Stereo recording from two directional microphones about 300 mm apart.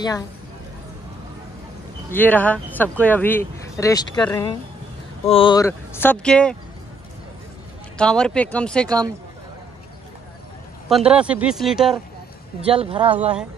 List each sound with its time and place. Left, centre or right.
2.0 s speech: centre
8.0 s speech: centre
8.8 s speech: centre
10.9 s speech: centre
12.6 s speech: centre